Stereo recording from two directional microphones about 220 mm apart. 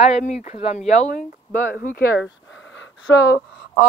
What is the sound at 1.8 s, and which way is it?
Speech, 45° left (ahead or behind).